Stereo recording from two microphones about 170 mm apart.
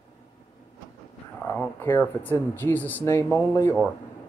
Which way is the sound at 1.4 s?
10° left (ahead or behind).